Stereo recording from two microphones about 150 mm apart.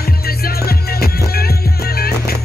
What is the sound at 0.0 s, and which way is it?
Music, 90° left.